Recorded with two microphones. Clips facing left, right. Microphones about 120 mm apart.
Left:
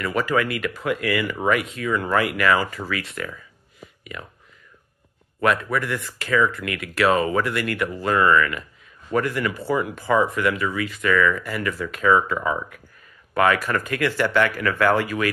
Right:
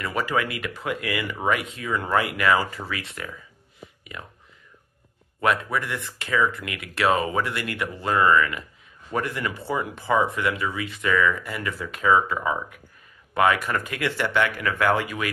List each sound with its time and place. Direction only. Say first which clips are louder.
0.0 s speech: left 3 dB; 25° right (ahead or behind)
5.4 s speech: left 2 dB; 20° right (ahead or behind)